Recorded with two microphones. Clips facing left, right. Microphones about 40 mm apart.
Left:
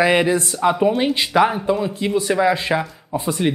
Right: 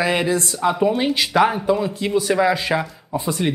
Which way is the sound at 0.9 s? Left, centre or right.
Centre.